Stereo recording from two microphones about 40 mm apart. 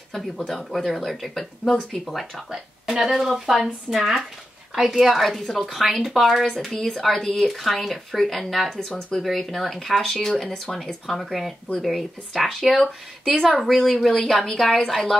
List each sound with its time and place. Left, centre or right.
0.1 s speech: centre
1.4 s a woman's voice: centre
2.0 s a woman's voice: centre
8.7 s a woman's voice: centre
9.2 s a woman's voice: centre